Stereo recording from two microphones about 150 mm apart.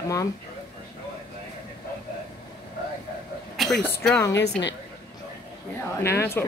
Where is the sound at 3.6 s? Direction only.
Centre (ahead or behind).